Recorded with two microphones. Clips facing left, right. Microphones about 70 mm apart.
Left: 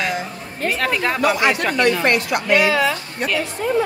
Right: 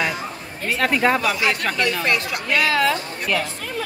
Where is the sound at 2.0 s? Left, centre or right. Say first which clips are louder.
Left 4 dB; left.